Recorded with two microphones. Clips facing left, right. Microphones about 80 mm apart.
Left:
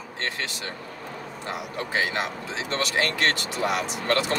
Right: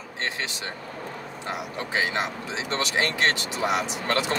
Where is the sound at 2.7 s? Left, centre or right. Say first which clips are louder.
Even; centre.